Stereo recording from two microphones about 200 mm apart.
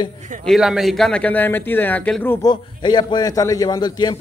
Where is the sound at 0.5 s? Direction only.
Centre (ahead or behind).